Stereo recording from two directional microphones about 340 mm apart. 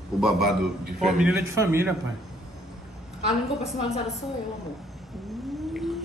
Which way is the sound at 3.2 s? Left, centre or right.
Centre.